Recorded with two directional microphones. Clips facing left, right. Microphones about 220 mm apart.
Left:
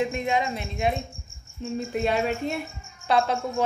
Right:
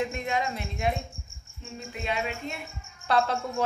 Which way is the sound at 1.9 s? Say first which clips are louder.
Left 6 dB; 40° left (ahead or behind).